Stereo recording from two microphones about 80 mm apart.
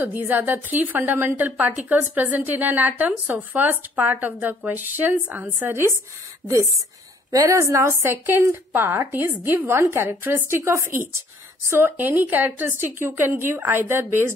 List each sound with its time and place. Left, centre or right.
0.0 s a woman's voice: right
5.7 s a woman's voice: right